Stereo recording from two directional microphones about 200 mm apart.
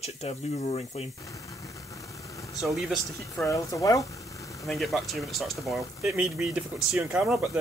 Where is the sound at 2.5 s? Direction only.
Centre (ahead or behind).